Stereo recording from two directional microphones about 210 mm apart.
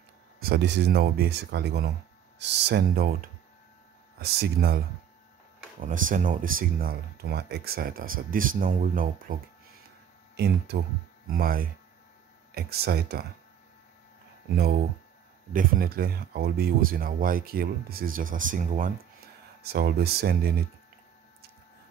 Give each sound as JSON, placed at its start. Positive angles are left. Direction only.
{"t": 0.4, "sound": "speech", "side_deg": -50}
{"t": 14.5, "sound": "speech", "side_deg": -45}
{"t": 19.6, "sound": "speech", "side_deg": -50}